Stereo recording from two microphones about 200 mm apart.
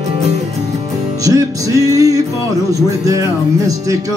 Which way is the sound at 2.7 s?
15° right (ahead or behind).